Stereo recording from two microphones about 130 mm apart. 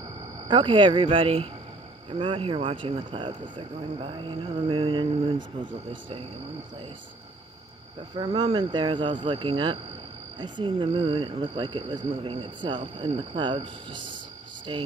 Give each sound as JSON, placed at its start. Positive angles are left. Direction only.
{"t": 0.5, "sound": "speech", "side_deg": -40}
{"t": 8.2, "sound": "speech", "side_deg": -40}